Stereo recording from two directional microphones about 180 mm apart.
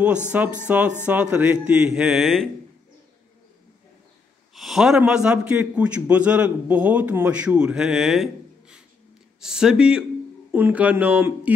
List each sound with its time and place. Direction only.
0.3 s a man's voice: 10° right (ahead or behind)
4.6 s a man's voice: centre (ahead or behind)